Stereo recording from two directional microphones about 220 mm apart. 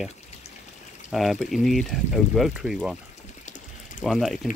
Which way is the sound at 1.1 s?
Centre (ahead or behind).